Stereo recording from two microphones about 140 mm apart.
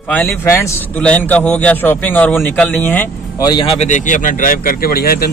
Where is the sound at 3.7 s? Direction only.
55° left (ahead or behind); by 5.2 s 90° left.